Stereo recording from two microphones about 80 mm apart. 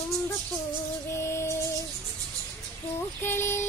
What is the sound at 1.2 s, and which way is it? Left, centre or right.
Music, left.